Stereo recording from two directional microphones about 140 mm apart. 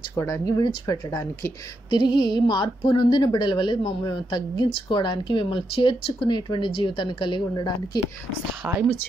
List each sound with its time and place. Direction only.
0.1 s speech: 20° left (ahead or behind)